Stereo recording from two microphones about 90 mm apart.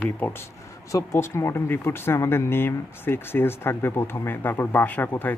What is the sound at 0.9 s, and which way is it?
Speech, 30° left (ahead or behind).